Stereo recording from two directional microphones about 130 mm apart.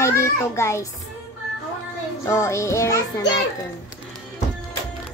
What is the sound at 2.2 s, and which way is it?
A child's voice, 25° left (ahead or behind).